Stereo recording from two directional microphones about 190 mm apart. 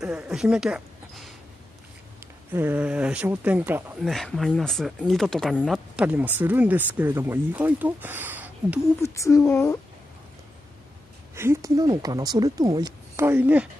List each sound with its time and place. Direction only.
0.0 s speech: 5° right (ahead or behind)
2.5 s speech: 10° right (ahead or behind)
9.0 s a sound: 15° left (ahead or behind)
11.3 s speech: 15° right (ahead or behind)